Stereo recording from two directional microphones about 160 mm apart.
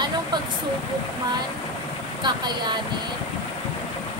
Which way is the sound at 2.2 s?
25° right (ahead or behind).